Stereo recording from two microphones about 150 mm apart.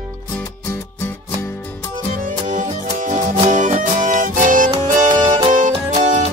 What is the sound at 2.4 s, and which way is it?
Music, 55° right (ahead or behind).